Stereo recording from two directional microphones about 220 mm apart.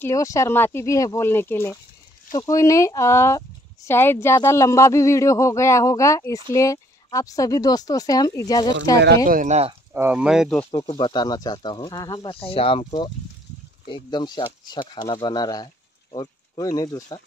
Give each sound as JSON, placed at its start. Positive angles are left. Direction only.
{"t": 0.0, "sound": "speech", "side_deg": 15}
{"t": 9.0, "sound": "speech", "side_deg": -45}
{"t": 9.9, "sound": "speech", "side_deg": -5}
{"t": 10.7, "sound": "speech", "side_deg": 20}